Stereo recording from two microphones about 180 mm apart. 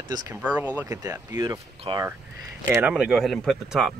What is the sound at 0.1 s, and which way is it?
Speech, 20° right (ahead or behind).